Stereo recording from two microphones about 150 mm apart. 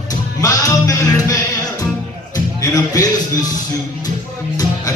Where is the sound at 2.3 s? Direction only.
25° left (ahead or behind).